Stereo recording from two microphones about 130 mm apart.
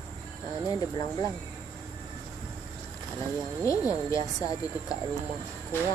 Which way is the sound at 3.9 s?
25° left (ahead or behind).